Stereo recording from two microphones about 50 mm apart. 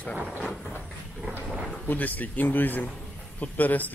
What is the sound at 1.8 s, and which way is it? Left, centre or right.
A man's voice, left.